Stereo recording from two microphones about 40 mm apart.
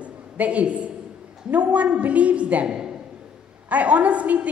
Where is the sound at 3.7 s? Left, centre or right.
Right.